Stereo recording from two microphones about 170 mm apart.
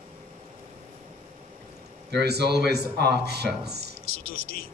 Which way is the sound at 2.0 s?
75° right (ahead or behind).